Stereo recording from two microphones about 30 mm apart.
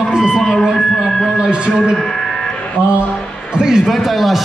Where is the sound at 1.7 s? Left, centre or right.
Right.